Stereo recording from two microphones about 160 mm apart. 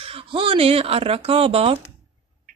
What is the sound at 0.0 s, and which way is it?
A woman's voice, 35° right (ahead or behind).